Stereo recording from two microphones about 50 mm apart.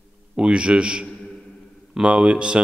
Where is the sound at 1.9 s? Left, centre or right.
Centre.